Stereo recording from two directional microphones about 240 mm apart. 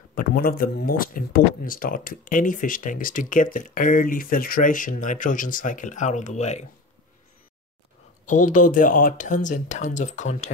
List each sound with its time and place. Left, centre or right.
0.1 s speech: left
8.3 s speech: left